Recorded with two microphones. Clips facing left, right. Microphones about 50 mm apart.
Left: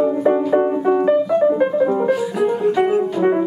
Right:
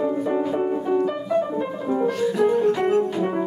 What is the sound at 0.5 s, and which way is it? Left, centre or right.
Music, left.